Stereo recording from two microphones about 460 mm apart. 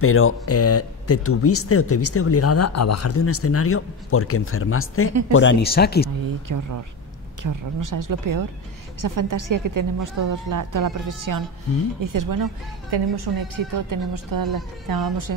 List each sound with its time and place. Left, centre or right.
0.0 s speech: left
6.2 s a woman's voice: right
12.9 s a woman's voice: right